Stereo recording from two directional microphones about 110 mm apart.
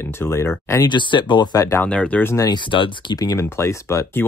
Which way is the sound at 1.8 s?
10° left (ahead or behind).